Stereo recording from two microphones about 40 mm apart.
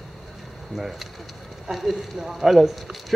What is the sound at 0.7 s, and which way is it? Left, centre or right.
Speech, centre.